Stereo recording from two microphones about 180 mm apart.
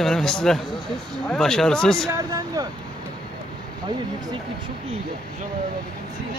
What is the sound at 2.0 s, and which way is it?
Speech, 20° right (ahead or behind).